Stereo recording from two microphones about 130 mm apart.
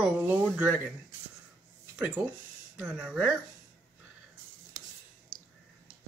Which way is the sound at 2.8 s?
10° right (ahead or behind).